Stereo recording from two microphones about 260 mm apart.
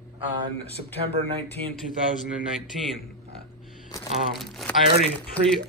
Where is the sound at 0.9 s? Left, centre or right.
Right.